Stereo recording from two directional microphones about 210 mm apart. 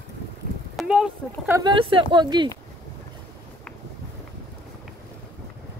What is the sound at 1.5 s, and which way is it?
Speech, 20° right (ahead or behind).